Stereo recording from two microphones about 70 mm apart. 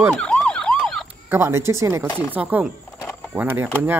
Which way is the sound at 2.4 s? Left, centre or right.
Right.